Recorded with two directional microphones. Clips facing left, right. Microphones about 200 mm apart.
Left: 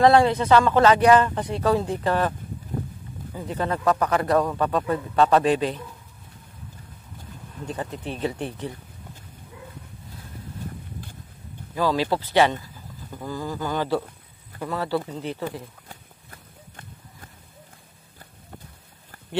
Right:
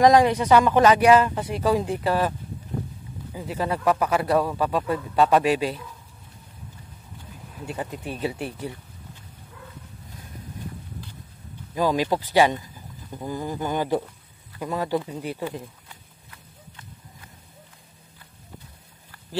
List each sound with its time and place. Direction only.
0.0 s a man's voice: 15° right (ahead or behind)
3.3 s a man's voice: 10° right (ahead or behind)
7.5 s a man's voice: 10° right (ahead or behind)
11.7 s a man's voice: 15° right (ahead or behind)
15.9 s run: 45° left (ahead or behind)